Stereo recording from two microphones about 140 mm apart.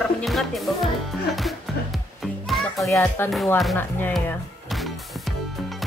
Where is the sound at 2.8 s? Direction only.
15° left (ahead or behind).